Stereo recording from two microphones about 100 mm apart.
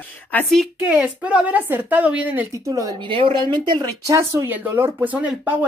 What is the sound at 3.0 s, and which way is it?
Speech, 60° right (ahead or behind).